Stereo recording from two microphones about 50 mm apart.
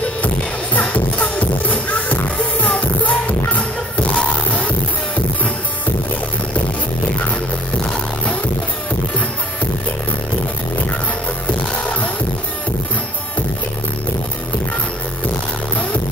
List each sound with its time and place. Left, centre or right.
0.9 s music: left